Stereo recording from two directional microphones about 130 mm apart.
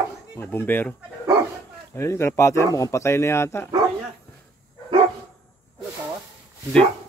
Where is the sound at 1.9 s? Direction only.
20° left (ahead or behind).